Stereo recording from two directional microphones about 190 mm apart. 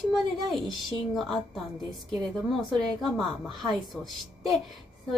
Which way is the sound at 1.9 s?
20° right (ahead or behind).